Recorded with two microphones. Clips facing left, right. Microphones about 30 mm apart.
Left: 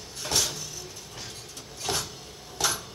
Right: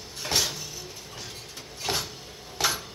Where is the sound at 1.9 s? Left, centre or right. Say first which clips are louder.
Right 1 dB; centre.